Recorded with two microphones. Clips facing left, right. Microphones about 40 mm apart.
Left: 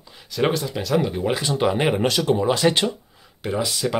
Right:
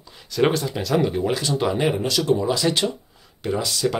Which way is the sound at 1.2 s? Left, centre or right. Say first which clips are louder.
Left 1 dB; left.